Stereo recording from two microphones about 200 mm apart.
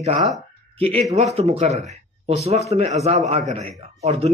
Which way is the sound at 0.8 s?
30° right (ahead or behind).